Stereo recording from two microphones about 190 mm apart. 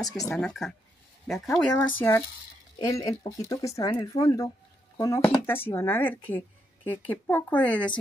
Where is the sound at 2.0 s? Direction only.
10° left (ahead or behind).